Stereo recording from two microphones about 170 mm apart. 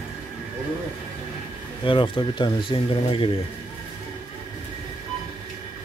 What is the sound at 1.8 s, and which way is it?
Speech, 30° left (ahead or behind).